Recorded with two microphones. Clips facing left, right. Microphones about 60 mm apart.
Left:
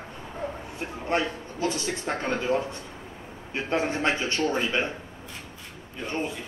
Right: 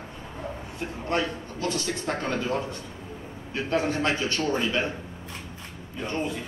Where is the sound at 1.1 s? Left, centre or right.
Left.